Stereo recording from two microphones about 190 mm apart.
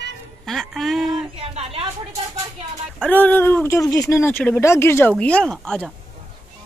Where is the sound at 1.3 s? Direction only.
35° right (ahead or behind).